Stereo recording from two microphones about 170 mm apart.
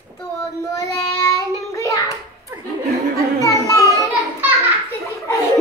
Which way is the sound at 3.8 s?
15° right (ahead or behind).